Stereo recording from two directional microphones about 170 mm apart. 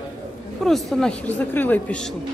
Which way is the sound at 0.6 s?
Centre (ahead or behind).